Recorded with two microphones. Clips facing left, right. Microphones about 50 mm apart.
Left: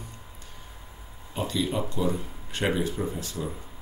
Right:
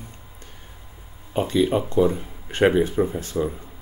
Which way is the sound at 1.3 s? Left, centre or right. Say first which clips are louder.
Right 8 dB; right.